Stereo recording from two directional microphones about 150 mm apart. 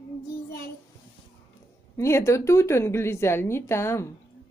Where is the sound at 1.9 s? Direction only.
20° left (ahead or behind).